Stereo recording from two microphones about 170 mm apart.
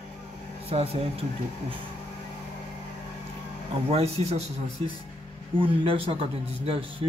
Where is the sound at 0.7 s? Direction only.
35° right (ahead or behind).